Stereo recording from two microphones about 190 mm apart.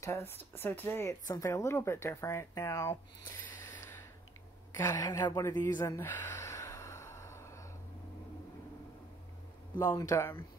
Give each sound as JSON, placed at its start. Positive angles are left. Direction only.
{"t": 0.0, "sound": "speech", "side_deg": 15}
{"t": 4.7, "sound": "gasp", "side_deg": 15}
{"t": 9.8, "sound": "speech", "side_deg": 15}